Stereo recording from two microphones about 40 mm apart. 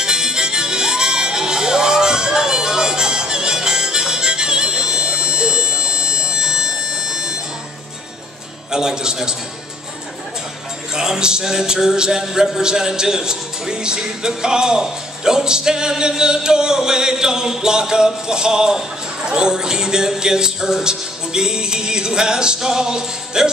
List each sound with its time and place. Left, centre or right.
0.0 s music: centre
8.7 s music: centre
10.9 s music: centre